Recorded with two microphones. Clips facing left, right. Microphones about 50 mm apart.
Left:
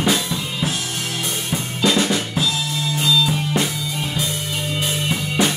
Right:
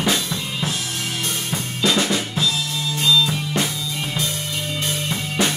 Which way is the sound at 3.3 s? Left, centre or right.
Centre.